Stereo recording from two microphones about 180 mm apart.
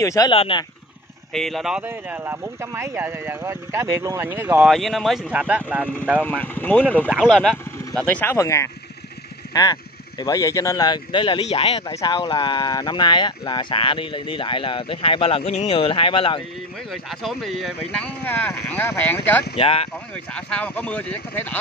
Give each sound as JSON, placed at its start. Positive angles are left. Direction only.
{"t": 0.0, "sound": "speech", "side_deg": 20}
{"t": 0.3, "sound": "speech", "side_deg": 30}
{"t": 1.3, "sound": "speech", "side_deg": 0}
{"t": 4.6, "sound": "speech", "side_deg": 0}
{"t": 6.2, "sound": "speech", "side_deg": 10}
{"t": 11.9, "sound": "speech", "side_deg": 20}
{"t": 16.9, "sound": "speech", "side_deg": 0}
{"t": 18.2, "sound": "speech", "side_deg": 10}
{"t": 19.5, "sound": "speech", "side_deg": 30}
{"t": 20.3, "sound": "speech", "side_deg": 5}